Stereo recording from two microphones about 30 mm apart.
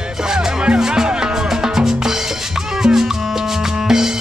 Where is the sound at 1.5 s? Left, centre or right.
Centre.